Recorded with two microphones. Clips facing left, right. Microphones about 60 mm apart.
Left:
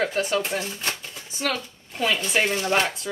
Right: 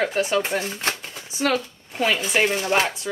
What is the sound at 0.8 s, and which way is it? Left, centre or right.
Shuffling cards, right.